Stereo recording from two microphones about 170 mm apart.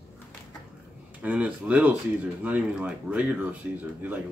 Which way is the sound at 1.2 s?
10° right (ahead or behind).